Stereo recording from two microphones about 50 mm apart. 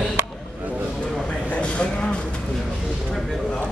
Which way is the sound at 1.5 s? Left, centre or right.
Left.